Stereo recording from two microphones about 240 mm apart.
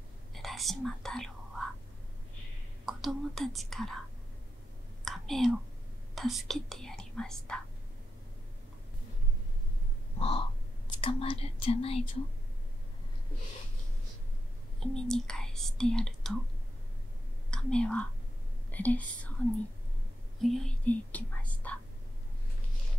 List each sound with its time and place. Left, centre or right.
0.3 s whispering: centre
2.8 s speech: centre
5.0 s whispering: centre
6.1 s speech: centre
10.1 s crow: left
11.0 s speech: left
14.8 s speech: centre
17.5 s speech: centre
20.4 s speech: centre